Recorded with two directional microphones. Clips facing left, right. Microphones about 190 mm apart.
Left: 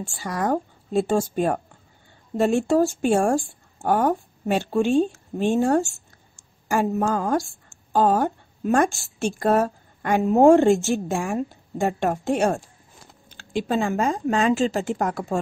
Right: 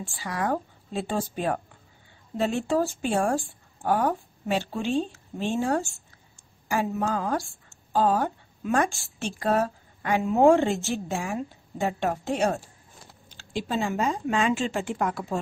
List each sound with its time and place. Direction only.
0.1 s a woman's voice: 45° left (ahead or behind)